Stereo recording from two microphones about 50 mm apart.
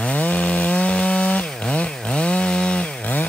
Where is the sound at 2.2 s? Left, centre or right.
Left.